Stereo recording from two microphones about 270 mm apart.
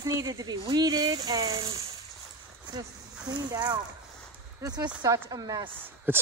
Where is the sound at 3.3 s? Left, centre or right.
Centre.